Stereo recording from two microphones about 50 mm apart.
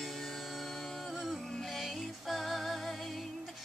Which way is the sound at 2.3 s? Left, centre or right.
Centre.